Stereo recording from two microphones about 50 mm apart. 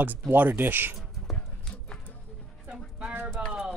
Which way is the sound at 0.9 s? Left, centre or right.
Centre.